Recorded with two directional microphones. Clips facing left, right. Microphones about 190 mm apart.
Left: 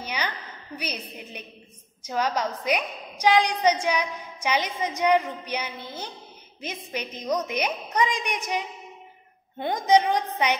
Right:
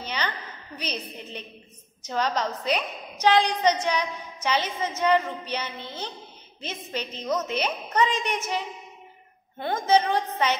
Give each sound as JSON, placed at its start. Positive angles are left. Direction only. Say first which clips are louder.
{"t": 0.0, "sound": "a woman's voice", "louder": "even", "side_deg": 10}